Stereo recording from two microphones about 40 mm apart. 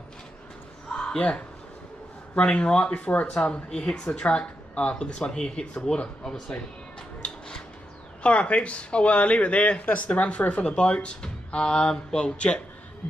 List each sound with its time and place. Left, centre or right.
0.9 s a sound: left
2.3 s speech: left
8.2 s speech: left